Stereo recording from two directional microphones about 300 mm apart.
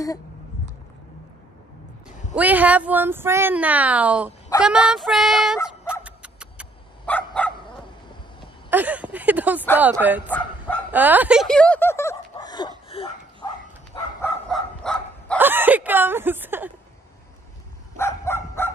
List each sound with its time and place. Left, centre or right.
2.3 s speech: centre
6.0 s dog: centre
8.6 s speech: centre
10.9 s a sound: centre
14.2 s bow-wow: centre
17.9 s bow-wow: centre